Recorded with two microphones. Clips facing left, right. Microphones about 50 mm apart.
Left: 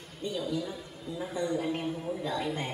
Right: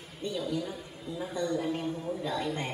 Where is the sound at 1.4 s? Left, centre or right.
Centre.